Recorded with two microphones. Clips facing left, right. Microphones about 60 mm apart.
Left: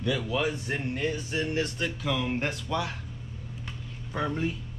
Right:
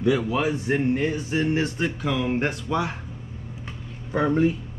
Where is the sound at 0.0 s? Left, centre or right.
Right.